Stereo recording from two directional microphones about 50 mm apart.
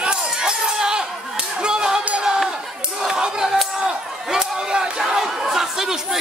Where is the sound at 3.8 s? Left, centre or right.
Centre.